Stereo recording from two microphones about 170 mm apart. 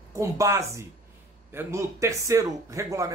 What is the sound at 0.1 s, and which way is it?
A man's voice, 15° right (ahead or behind).